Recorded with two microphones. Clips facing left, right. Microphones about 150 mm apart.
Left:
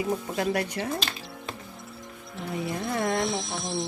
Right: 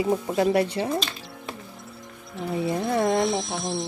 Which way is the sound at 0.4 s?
25° right (ahead or behind).